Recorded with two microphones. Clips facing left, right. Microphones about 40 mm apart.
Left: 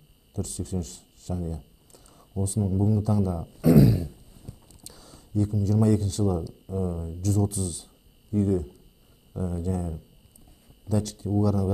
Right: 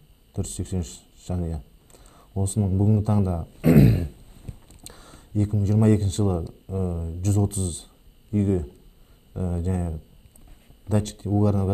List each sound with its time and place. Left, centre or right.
0.3 s speech: right